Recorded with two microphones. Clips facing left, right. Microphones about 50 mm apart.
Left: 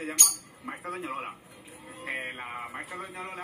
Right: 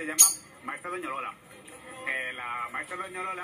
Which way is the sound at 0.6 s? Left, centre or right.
Right.